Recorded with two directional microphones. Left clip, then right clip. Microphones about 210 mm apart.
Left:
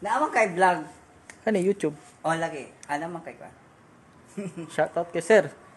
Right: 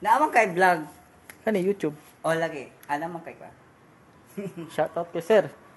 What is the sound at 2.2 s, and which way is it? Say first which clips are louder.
Speech: right 1 dB; 25° right (ahead or behind).